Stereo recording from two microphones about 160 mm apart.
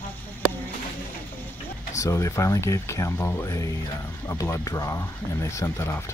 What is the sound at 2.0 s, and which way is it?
Speech, 20° left (ahead or behind).